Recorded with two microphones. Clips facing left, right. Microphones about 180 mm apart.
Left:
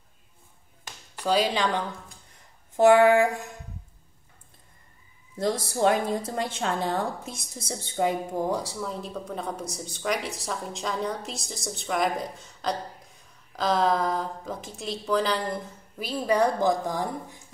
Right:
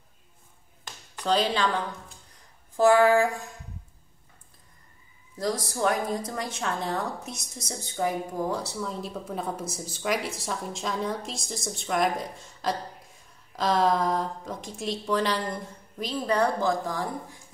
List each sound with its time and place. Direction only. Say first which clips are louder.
1.1 s speech: left 1 dB; 10° left (ahead or behind)
2.7 s a woman's voice: left 2 dB; 20° left (ahead or behind)
5.4 s a woman's voice: left 3 dB; 30° left (ahead or behind)
8.8 s a woman's voice: even; centre (ahead or behind); by 17.4 s 20° left (ahead or behind)